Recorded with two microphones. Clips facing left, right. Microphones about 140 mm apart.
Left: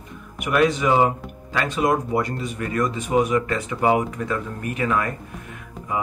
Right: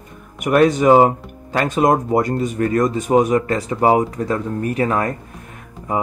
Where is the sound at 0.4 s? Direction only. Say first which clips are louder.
Right 5 dB; 45° right (ahead or behind).